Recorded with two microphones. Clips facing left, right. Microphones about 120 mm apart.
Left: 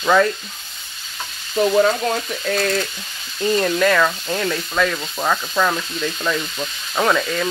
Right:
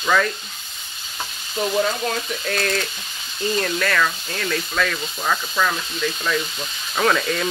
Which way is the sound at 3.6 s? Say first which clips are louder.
Left 5 dB; 15° left (ahead or behind).